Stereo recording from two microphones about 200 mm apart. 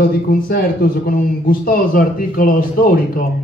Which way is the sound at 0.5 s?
45° left (ahead or behind).